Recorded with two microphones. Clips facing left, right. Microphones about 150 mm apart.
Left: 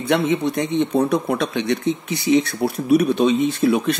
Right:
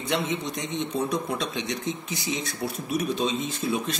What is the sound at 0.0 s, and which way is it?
Speech, 60° left (ahead or behind).